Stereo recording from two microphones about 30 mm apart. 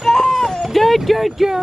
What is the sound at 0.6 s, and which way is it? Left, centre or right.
Speech, centre.